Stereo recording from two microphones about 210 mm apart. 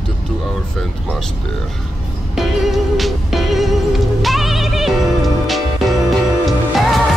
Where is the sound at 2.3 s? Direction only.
Centre (ahead or behind).